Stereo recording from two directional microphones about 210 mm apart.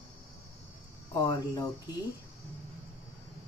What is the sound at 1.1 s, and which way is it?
Speech, 15° left (ahead or behind).